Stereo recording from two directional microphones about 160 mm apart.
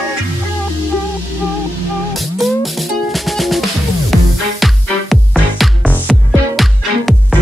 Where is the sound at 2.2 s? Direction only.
Centre (ahead or behind).